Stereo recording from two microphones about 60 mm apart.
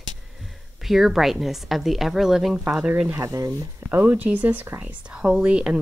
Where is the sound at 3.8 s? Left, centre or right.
Right.